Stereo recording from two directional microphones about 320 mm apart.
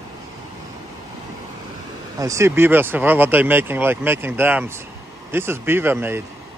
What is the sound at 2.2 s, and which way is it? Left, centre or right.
Speech, centre.